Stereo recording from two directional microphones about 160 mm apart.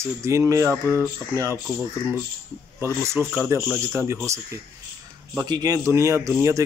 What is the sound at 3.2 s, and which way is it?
Speech, 15° right (ahead or behind).